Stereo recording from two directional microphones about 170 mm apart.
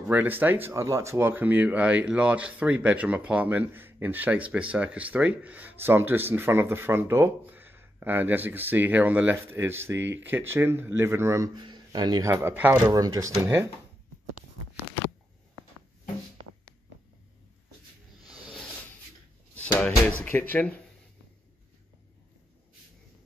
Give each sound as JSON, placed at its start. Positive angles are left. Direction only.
{"t": 0.1, "sound": "speech", "side_deg": -10}
{"t": 12.8, "sound": "speech", "side_deg": -20}
{"t": 18.3, "sound": "snake", "side_deg": 5}
{"t": 19.5, "sound": "speech", "side_deg": 5}